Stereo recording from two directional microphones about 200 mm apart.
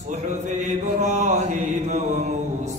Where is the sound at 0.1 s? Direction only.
35° right (ahead or behind).